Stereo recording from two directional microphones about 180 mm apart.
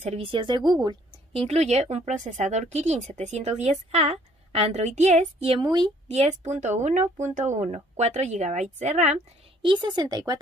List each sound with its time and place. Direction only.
0.0 s a woman's voice: 35° right (ahead or behind)
1.5 s speech: 35° right (ahead or behind)
6.0 s speech: 40° right (ahead or behind); by 10.4 s 20° right (ahead or behind)